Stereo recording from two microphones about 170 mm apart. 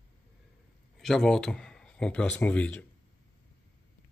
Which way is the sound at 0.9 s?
Centre (ahead or behind).